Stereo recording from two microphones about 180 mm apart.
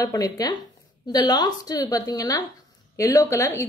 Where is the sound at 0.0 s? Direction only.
20° left (ahead or behind).